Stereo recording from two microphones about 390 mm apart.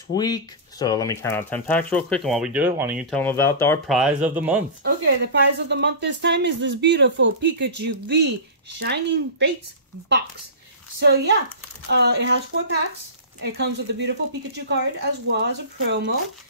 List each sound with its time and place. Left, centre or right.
0.1 s speech: centre
4.8 s speech: right
11.0 s speech: right
15.2 s speech: right